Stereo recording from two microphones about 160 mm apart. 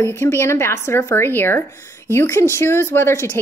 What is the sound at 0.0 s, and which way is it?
Speech, 15° left (ahead or behind).